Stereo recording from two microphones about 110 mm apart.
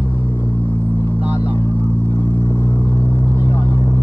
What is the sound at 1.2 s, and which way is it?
Vehicle, 15° right (ahead or behind).